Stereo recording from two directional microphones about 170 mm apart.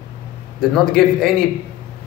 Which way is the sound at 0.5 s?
5° left (ahead or behind).